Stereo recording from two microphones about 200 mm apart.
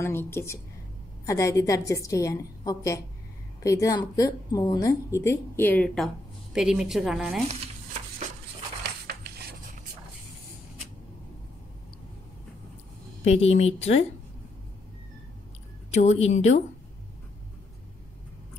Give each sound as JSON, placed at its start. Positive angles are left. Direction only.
{"t": 0.0, "sound": "a woman's voice", "side_deg": 10}
{"t": 6.5, "sound": "a woman's voice", "side_deg": -5}
{"t": 9.0, "sound": "a sound", "side_deg": -50}
{"t": 13.2, "sound": "a woman's voice", "side_deg": 30}
{"t": 15.9, "sound": "a woman's voice", "side_deg": 35}